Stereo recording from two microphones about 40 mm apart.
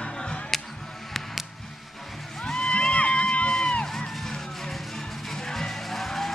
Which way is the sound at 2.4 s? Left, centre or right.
Left.